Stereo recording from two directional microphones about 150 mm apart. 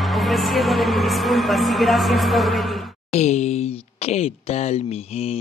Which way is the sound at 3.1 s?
50° left (ahead or behind).